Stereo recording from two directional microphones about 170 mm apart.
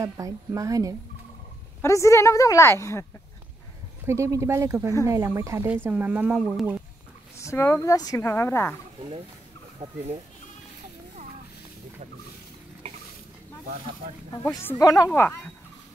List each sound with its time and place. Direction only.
0.0 s a woman's voice: 20° right (ahead or behind)
1.8 s a woman's voice: 15° left (ahead or behind)
4.0 s speech: 15° right (ahead or behind)
7.3 s a woman's voice: 15° left (ahead or behind)
9.8 s a woman's voice: 25° right (ahead or behind)
14.3 s a woman's voice: 20° left (ahead or behind)